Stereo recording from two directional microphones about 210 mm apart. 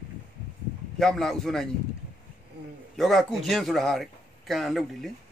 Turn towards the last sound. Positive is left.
turn(degrees=0)  # may be behind; listen again after turning